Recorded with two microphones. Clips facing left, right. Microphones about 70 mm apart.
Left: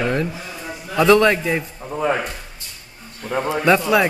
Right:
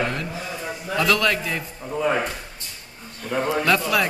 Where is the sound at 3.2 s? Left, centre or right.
Left.